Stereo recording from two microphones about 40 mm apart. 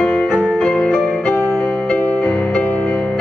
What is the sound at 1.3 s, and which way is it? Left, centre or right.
Music, left.